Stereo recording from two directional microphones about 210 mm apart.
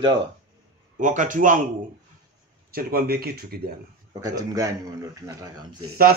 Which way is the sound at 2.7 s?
45° right (ahead or behind).